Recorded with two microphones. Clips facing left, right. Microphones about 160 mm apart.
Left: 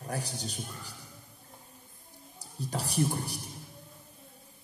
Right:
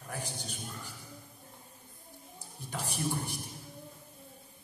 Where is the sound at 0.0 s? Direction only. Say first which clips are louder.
Left 4 dB; 35° left (ahead or behind).